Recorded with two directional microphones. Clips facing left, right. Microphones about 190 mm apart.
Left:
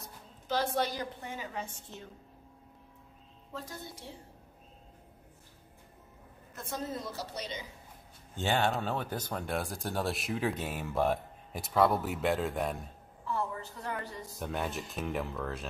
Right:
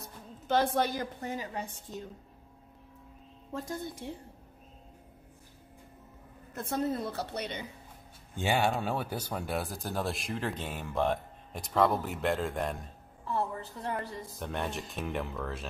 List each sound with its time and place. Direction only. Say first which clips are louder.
0.0 s a woman's voice: right 4 dB; 55° right (ahead or behind); by 1.8 s 40° right (ahead or behind)
3.6 s a woman's voice: right 7 dB; 50° right (ahead or behind)
6.5 s a woman's voice: right 6 dB; 60° right (ahead or behind)
8.4 s speech: right 1 dB; 10° right (ahead or behind)
13.3 s a sound: right 2 dB; 35° right (ahead or behind)
14.3 s speech: left 1 dB; centre (ahead or behind)